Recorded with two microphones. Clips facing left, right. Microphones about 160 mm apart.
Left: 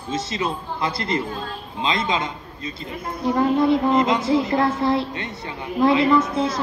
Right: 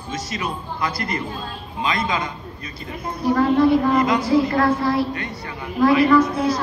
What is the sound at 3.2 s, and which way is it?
A woman's voice, 20° left (ahead or behind).